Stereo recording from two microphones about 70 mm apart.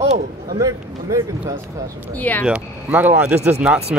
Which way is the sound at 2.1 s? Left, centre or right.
Left.